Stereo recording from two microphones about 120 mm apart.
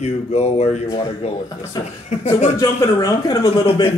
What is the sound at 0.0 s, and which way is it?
Speech, 65° left (ahead or behind).